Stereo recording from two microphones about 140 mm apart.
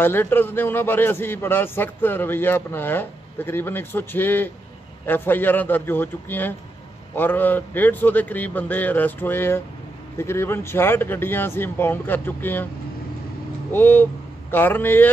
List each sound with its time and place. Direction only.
0.0 s a man's voice: 15° left (ahead or behind)
13.7 s a man's voice: 15° left (ahead or behind)